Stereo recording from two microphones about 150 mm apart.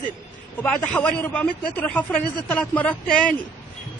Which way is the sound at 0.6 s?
10° left (ahead or behind).